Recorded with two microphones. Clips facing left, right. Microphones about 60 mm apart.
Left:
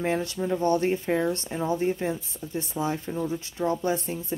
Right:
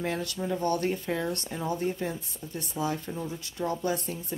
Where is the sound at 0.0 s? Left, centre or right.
Left.